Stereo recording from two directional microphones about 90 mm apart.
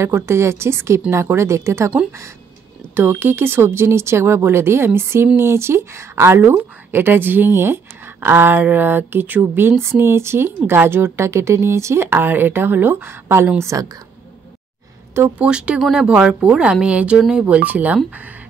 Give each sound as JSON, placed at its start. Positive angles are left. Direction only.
{"t": 0.0, "sound": "speech", "side_deg": -30}
{"t": 2.9, "sound": "speech", "side_deg": -25}
{"t": 15.3, "sound": "speech", "side_deg": -15}